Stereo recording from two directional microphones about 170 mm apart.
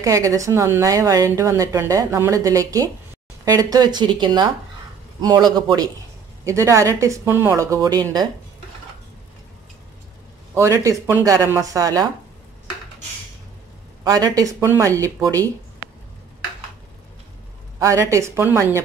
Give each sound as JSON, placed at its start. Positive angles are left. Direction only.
{"t": 0.0, "sound": "speech", "side_deg": -20}
{"t": 10.5, "sound": "speech", "side_deg": -15}
{"t": 14.0, "sound": "speech", "side_deg": -20}
{"t": 17.7, "sound": "speech", "side_deg": -15}